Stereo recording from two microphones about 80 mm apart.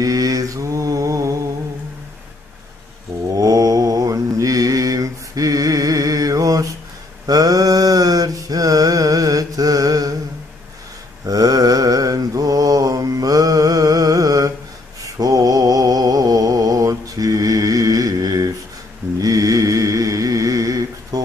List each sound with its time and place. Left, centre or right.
0.0 s mantra: right
3.3 s mantra: right
11.2 s mantra: right